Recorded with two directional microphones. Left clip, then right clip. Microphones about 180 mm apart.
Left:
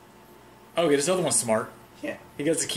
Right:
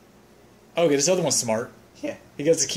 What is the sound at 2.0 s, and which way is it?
Speech, 20° right (ahead or behind).